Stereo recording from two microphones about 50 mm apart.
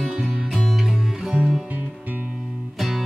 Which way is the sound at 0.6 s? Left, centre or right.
Centre.